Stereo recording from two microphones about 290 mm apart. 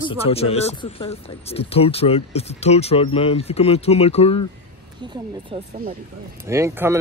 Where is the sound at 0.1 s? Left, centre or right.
Centre.